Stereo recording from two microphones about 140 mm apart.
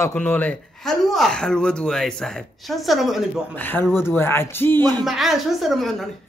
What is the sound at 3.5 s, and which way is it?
A man's voice, 15° left (ahead or behind).